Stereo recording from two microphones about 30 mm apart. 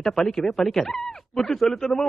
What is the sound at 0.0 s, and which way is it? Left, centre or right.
Speech, centre.